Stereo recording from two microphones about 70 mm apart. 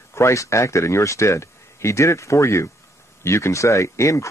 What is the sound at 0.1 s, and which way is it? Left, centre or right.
Speech, left.